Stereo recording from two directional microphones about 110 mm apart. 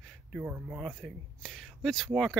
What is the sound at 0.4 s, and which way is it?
Speech, 15° right (ahead or behind).